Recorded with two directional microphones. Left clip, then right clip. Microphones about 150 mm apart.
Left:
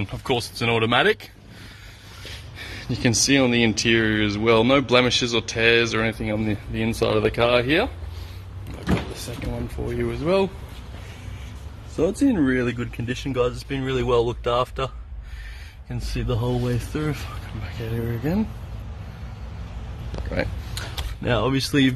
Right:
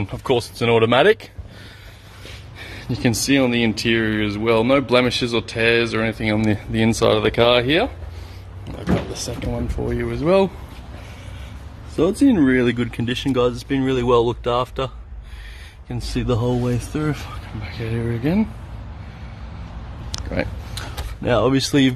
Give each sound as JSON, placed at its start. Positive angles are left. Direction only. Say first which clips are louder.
{"t": 0.0, "sound": "speech", "louder": "right 4 dB", "side_deg": -20}
{"t": 2.6, "sound": "speech", "louder": "right 2 dB", "side_deg": -5}
{"t": 6.2, "sound": "speech", "louder": "right 6 dB", "side_deg": -15}
{"t": 9.1, "sound": "speech", "louder": "right 5 dB", "side_deg": -25}
{"t": 12.3, "sound": "speech", "louder": "right 5 dB", "side_deg": -15}
{"t": 15.9, "sound": "speech", "louder": "right 6 dB", "side_deg": -20}
{"t": 20.1, "sound": "a sound", "louder": "right 2 dB", "side_deg": -5}
{"t": 21.4, "sound": "speech", "louder": "right 4 dB", "side_deg": -20}